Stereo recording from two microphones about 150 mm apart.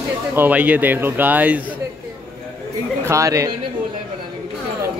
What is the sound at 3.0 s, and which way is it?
Speech, 20° right (ahead or behind).